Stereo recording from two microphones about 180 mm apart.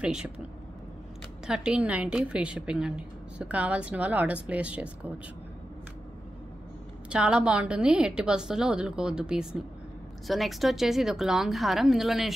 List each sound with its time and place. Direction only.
0.0 s a woman's voice: 5° right (ahead or behind)
1.5 s a woman's voice: 5° right (ahead or behind)
7.1 s a woman's voice: 5° right (ahead or behind)